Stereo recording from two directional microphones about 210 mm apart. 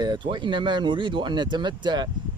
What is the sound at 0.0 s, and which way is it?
Speech, 20° right (ahead or behind).